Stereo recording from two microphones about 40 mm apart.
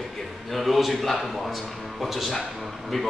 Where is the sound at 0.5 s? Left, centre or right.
Centre.